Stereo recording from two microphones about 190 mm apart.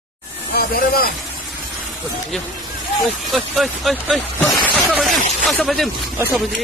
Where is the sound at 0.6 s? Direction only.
50° left (ahead or behind).